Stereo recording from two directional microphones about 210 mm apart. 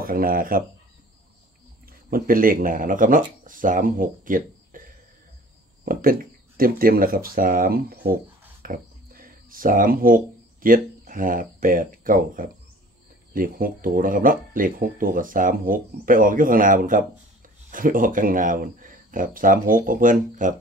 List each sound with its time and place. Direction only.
0.0 s speech: 45° right (ahead or behind)
2.0 s speech: 45° right (ahead or behind)